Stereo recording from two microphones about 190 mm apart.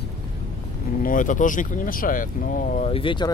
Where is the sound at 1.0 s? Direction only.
45° left (ahead or behind).